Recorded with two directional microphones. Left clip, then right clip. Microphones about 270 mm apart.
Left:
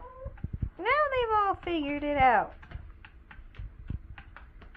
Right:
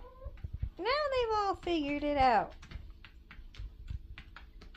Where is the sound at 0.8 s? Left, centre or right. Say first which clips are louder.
Left 5 dB; centre.